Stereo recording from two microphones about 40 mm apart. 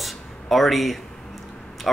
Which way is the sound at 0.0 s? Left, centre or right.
Centre.